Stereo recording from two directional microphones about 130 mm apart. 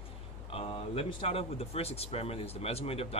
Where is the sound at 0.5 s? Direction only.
45° left (ahead or behind).